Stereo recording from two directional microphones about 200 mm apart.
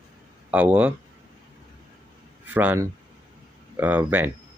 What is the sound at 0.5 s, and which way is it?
Speech, 5° right (ahead or behind).